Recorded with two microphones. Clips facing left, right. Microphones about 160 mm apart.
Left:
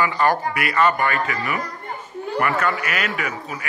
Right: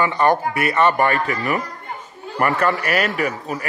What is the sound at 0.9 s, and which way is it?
A man's voice, 35° right (ahead or behind).